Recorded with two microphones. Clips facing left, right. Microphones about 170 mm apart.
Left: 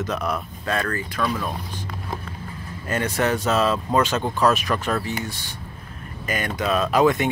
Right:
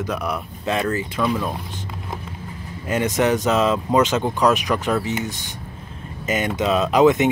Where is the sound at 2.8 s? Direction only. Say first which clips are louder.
Right 3 dB; 15° right (ahead or behind).